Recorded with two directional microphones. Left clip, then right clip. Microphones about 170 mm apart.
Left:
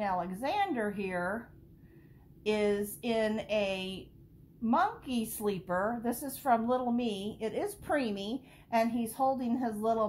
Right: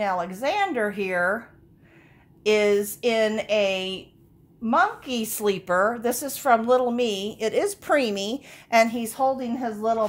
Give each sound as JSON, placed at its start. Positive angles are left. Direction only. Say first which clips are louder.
{"t": 0.0, "sound": "a woman's voice", "louder": "right 8 dB", "side_deg": -55}
{"t": 2.4, "sound": "a woman's voice", "louder": "right 10 dB", "side_deg": -55}